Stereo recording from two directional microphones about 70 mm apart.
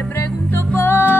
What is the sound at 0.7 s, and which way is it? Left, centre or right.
Music, left.